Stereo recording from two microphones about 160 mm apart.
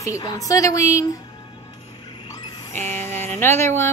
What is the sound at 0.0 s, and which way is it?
A woman's voice, 25° left (ahead or behind).